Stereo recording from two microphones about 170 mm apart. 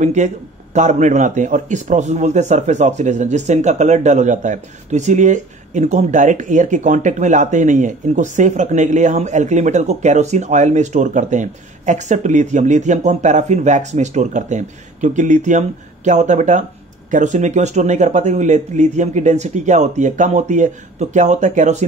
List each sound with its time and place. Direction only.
0.0 s a man's voice: 45° right (ahead or behind)